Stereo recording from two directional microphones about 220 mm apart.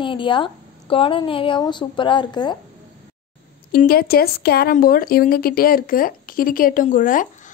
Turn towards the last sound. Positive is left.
turn(degrees=40)  # may be behind; listen again after turning